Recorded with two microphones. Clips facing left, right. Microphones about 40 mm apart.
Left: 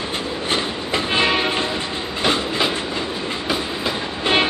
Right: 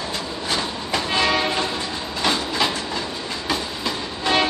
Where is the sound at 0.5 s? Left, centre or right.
Left.